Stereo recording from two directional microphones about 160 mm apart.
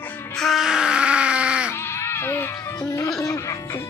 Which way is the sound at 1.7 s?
15° left (ahead or behind).